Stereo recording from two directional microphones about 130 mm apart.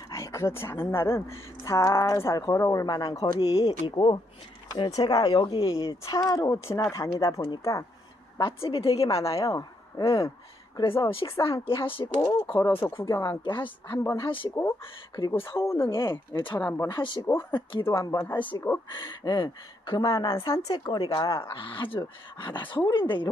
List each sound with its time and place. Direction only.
0.1 s speech: 25° left (ahead or behind); by 5.9 s 45° left (ahead or behind)
5.9 s speech: 25° left (ahead or behind)
8.6 s a woman's voice: 45° left (ahead or behind)
9.0 s speech: 25° left (ahead or behind)
11.1 s a woman's voice: 45° left (ahead or behind)
12.4 s speech: 30° left (ahead or behind)
13.4 s speech: 35° left (ahead or behind)
13.8 s speech: 20° left (ahead or behind)
14.2 s speech: 40° left (ahead or behind)
14.5 s speech: 20° left (ahead or behind)
17.5 s speech: 35° left (ahead or behind)
17.8 s speech: 25° left (ahead or behind)
20.0 s speech: 25° left (ahead or behind)
21.5 s speech: 40° left (ahead or behind)